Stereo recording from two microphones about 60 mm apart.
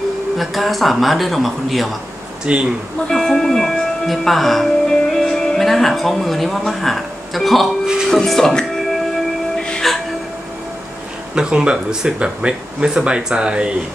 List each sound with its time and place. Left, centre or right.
0.4 s speech: centre
2.5 s speech: centre
3.1 s speech: centre
9.6 s music: centre
11.3 s speech: centre